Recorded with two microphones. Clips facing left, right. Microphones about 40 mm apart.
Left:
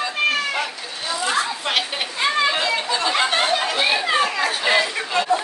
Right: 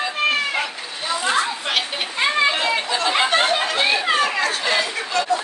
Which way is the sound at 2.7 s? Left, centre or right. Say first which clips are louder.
Right 1 dB; centre.